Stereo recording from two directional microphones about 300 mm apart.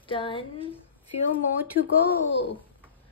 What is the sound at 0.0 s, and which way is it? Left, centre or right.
Speech, centre.